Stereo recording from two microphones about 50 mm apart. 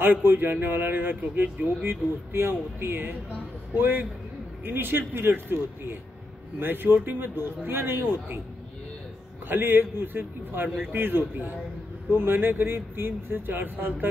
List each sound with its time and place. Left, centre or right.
0.0 s a man's voice: right
9.5 s speech: right